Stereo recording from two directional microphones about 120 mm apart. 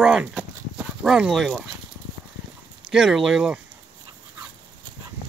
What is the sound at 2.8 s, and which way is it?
Speech, 5° right (ahead or behind).